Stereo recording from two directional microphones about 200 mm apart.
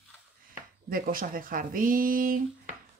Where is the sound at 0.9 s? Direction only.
45° right (ahead or behind).